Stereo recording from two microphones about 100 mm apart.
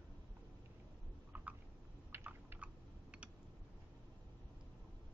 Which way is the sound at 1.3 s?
20° right (ahead or behind).